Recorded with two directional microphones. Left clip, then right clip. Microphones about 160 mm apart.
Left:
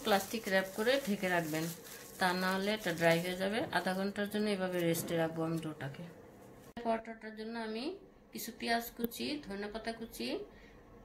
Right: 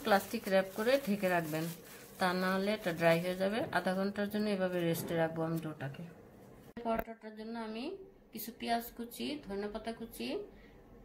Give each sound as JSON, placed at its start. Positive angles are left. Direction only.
{"t": 0.0, "sound": "a woman's voice", "side_deg": -15}